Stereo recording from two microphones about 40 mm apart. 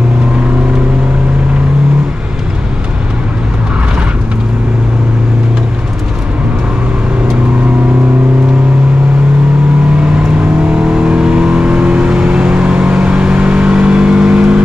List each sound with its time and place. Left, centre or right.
10.7 s vehicle: right